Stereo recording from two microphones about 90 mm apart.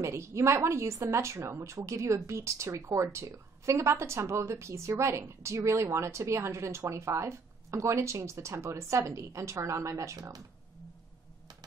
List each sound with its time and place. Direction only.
0.0 s speech: 35° right (ahead or behind)